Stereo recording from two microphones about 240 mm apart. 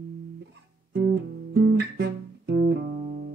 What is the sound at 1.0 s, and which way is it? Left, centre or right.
Guitar, right.